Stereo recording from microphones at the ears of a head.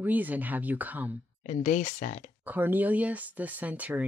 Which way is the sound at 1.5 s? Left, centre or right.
Left.